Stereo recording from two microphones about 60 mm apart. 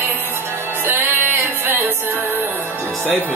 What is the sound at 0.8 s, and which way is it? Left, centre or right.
Music, right.